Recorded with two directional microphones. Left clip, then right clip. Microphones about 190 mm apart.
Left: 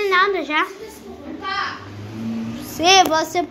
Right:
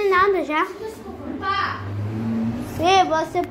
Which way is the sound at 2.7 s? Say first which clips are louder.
Left 3 dB; 15° left (ahead or behind).